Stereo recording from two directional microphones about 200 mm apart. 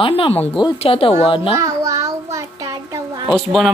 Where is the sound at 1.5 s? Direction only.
15° right (ahead or behind).